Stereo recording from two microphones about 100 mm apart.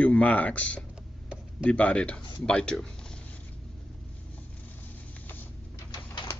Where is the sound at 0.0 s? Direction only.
15° left (ahead or behind).